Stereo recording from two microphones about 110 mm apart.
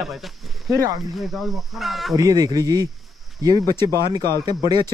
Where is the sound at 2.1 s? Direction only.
35° right (ahead or behind).